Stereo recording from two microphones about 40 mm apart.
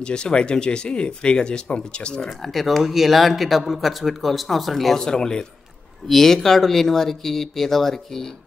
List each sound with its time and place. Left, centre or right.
0.0 s speech: left
2.2 s speech: centre
4.9 s speech: centre
6.0 s speech: centre